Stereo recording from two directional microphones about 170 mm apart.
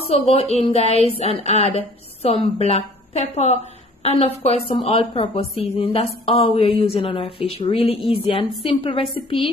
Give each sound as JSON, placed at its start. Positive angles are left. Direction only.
{"t": 0.0, "sound": "a woman's voice", "side_deg": 40}